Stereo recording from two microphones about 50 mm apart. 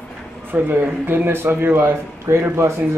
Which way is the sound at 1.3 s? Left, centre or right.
Right.